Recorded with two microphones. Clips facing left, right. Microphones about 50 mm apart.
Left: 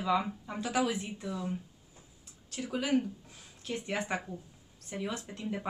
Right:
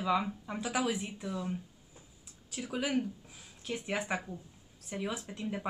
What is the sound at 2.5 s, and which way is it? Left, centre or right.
Speech, centre.